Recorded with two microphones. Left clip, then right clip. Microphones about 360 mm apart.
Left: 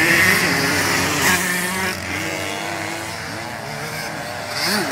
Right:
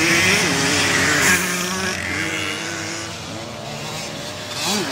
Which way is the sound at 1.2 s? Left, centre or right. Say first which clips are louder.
Even; centre.